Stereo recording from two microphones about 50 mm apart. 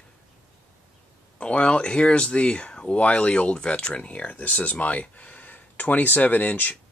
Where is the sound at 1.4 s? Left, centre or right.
Left.